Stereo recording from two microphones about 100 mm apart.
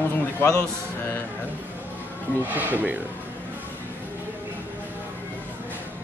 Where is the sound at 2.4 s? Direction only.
15° right (ahead or behind).